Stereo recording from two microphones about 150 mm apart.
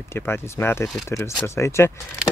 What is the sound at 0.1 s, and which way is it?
Speech, 15° left (ahead or behind).